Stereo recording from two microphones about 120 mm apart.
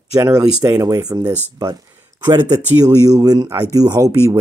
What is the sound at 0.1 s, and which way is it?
Speech, 30° right (ahead or behind).